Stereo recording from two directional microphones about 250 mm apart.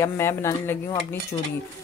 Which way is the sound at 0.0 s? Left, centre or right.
Centre.